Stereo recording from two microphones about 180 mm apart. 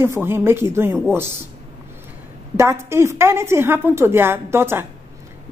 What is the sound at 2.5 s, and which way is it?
A woman's voice, 15° right (ahead or behind).